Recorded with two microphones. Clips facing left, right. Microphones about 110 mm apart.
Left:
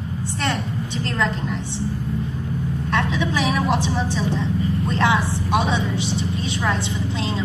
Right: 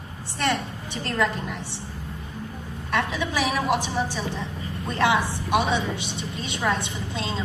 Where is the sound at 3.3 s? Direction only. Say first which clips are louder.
Left 1 dB; 15° right (ahead or behind).